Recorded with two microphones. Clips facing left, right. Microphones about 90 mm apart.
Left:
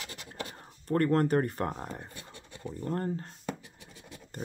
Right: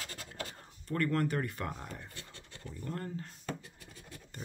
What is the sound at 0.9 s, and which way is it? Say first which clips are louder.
Speech: left 6 dB; 40° left (ahead or behind).